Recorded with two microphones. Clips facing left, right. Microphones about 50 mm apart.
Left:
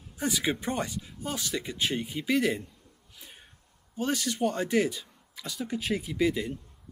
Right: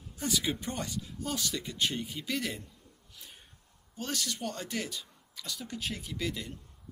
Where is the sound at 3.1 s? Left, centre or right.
Centre.